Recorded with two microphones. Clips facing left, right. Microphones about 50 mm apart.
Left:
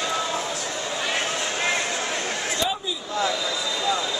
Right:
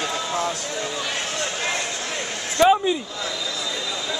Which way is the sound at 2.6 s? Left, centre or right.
Right.